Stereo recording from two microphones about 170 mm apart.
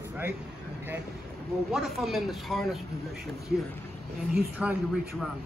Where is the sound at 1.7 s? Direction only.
Centre (ahead or behind).